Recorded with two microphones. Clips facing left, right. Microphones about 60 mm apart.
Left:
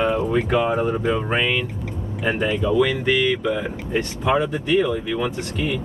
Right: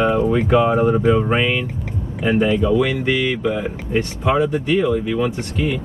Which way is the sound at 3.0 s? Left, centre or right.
Centre.